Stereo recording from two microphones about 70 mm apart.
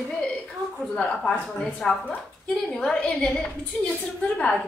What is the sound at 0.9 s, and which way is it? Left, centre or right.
Speech, centre.